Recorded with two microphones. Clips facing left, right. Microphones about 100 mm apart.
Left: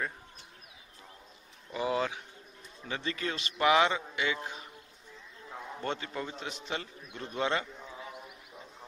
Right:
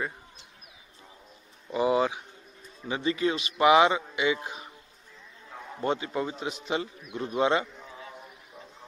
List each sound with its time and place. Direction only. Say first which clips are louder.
1.7 s bird: right 7 dB; 20° right (ahead or behind)
2.8 s a man's voice: right 8 dB; 15° right (ahead or behind)
5.8 s a man's voice: right 8 dB; 15° right (ahead or behind)
7.8 s a sound: even; centre (ahead or behind)